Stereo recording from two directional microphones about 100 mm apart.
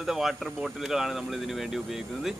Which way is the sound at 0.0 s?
5° right (ahead or behind).